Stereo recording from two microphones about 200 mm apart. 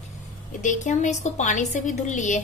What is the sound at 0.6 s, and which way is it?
A woman's voice, 40° left (ahead or behind).